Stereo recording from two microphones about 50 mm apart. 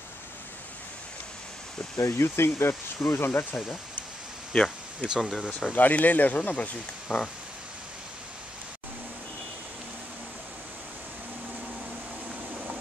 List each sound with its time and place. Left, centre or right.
2.0 s speech: left
3.3 s speech: left
4.6 s speech: centre
5.4 s speech: centre
5.7 s speech: left
7.1 s a sound: centre